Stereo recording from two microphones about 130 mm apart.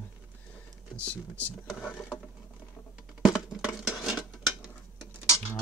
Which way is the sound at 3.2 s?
5° right (ahead or behind).